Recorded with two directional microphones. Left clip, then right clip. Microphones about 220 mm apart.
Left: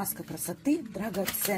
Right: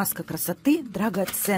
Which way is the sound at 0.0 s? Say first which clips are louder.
Right 7 dB; 45° right (ahead or behind).